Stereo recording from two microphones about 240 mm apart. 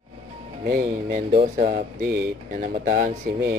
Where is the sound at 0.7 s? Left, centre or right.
Right.